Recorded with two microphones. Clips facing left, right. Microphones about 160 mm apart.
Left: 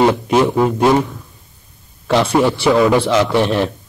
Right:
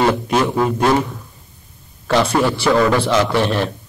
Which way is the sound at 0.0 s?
20° left (ahead or behind).